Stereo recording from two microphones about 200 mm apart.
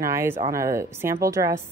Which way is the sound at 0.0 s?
15° right (ahead or behind).